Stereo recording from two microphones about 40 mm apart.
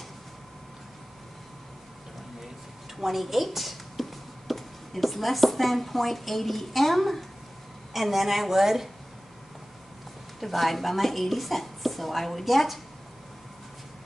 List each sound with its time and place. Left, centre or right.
3.0 s a woman's voice: centre
10.4 s a woman's voice: centre